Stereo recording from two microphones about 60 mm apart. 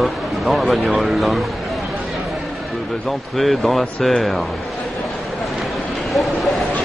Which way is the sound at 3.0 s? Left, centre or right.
Centre.